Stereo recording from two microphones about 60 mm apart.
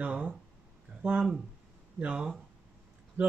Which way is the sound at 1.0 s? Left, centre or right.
Centre.